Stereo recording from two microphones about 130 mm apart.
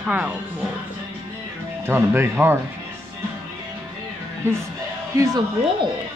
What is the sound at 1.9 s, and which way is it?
Speech, 15° right (ahead or behind).